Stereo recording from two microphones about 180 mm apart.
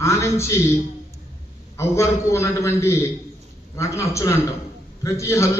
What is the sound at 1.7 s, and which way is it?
A man's voice, 15° left (ahead or behind).